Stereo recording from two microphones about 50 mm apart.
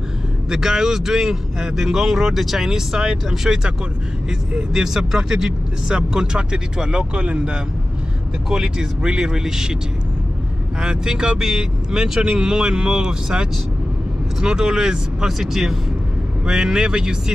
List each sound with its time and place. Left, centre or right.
0.5 s speech: centre
10.8 s speech: centre